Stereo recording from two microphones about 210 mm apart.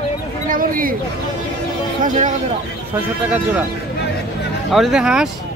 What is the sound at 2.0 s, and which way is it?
Speech, 40° right (ahead or behind).